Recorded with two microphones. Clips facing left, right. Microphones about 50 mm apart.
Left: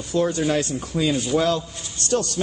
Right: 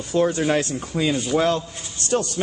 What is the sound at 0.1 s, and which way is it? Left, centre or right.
A man's voice, right.